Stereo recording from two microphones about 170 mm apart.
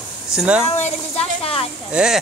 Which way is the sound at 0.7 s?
40° left (ahead or behind).